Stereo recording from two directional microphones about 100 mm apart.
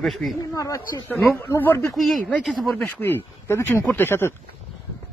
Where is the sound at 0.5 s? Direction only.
35° left (ahead or behind).